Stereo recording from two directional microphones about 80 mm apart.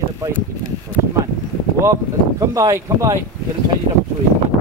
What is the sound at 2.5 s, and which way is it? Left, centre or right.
Speech, right.